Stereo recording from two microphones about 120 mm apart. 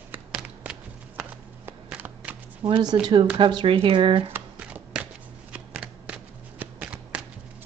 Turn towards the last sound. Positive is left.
turn(degrees=-10)  # may be behind; listen again after turning